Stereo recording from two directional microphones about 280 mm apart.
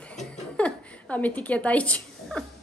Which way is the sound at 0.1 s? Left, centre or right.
Centre.